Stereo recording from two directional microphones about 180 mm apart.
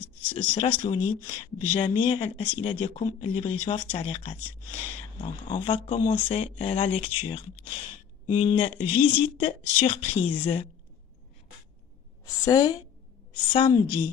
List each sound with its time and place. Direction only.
0.3 s speech: 30° left (ahead or behind)
12.3 s speech: 20° left (ahead or behind)